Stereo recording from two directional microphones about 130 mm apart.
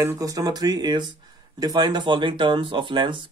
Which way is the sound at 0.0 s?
25° right (ahead or behind).